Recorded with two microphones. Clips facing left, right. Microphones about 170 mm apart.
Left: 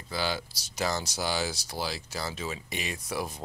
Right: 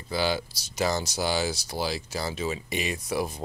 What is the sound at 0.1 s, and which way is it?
Speech, 10° right (ahead or behind).